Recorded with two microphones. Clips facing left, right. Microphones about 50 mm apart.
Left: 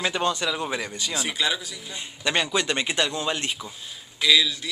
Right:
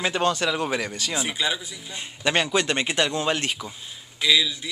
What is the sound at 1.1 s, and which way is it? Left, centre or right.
A man's voice, centre.